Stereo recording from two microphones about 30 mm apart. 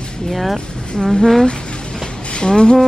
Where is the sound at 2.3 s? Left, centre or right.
Left.